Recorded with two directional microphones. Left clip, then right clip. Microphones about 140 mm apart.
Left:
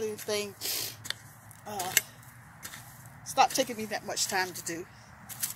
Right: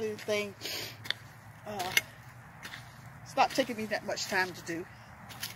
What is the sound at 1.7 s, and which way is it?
Speech, 40° left (ahead or behind).